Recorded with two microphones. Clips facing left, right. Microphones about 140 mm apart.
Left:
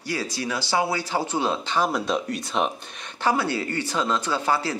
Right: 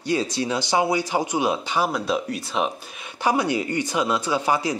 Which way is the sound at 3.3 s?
15° right (ahead or behind).